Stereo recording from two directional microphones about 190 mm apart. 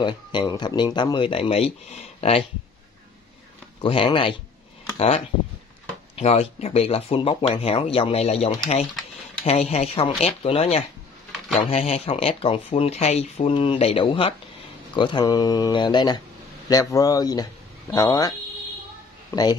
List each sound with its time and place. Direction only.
0.0 s speech: 25° left (ahead or behind)
3.8 s speech: 25° left (ahead or behind)